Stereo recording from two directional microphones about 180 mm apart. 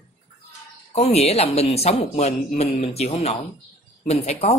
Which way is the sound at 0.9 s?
35° left (ahead or behind).